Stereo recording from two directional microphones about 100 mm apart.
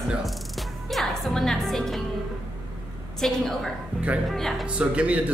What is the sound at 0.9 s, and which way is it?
A woman's voice, 5° left (ahead or behind).